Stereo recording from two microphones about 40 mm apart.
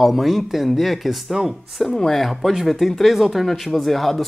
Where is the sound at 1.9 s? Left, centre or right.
Centre.